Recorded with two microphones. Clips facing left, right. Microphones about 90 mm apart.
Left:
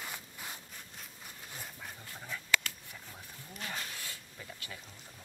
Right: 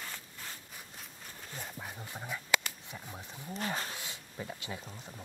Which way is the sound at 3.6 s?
35° right (ahead or behind).